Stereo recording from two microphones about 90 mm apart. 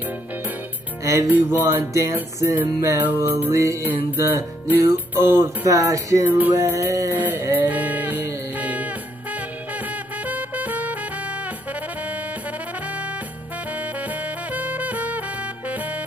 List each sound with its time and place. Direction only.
1.0 s music: 35° right (ahead or behind)
1.6 s music: 25° right (ahead or behind)
3.2 s music: 25° right (ahead or behind)
3.5 s music: 35° right (ahead or behind)
6.2 s music: 20° right (ahead or behind)
6.5 s music: 35° right (ahead or behind); by 11.0 s 20° right (ahead or behind)
13.7 s music: 15° right (ahead or behind)